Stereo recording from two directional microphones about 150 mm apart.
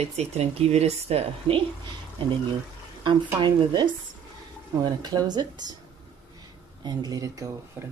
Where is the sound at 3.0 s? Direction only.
30° right (ahead or behind).